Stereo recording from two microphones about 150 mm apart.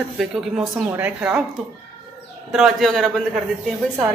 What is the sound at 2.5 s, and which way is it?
Speech, 5° right (ahead or behind).